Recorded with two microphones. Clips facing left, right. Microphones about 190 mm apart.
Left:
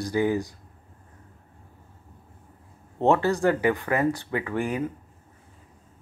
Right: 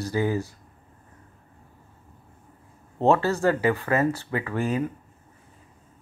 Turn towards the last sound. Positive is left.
turn(degrees=15)  # may be behind; listen again after turning